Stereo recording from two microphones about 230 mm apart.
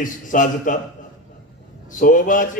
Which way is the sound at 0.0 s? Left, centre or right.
Left.